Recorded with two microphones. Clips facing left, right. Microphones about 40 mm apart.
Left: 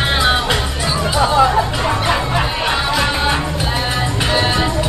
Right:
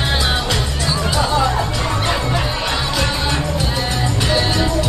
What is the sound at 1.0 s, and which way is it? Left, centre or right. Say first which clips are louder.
Music: left 5 dB; centre.